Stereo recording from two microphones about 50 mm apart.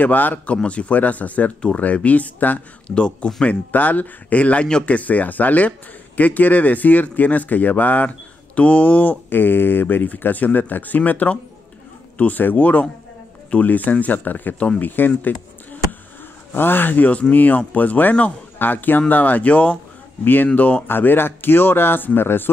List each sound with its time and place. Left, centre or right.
0.0 s a man's voice: left
0.7 s a man's voice: left
2.9 s speech: left
3.4 s a man's voice: left
20.8 s speech: left